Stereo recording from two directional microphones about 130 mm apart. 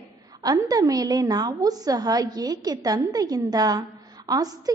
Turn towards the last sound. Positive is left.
turn(degrees=-30)  # may be behind; listen again after turning